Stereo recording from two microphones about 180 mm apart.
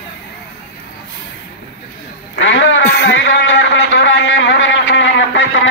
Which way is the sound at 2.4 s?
90° left.